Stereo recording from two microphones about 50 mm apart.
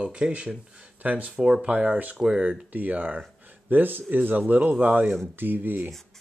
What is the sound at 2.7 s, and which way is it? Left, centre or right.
Speech, right.